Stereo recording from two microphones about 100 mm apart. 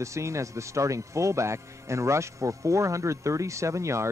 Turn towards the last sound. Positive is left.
turn(degrees=-30)  # may be behind; listen again after turning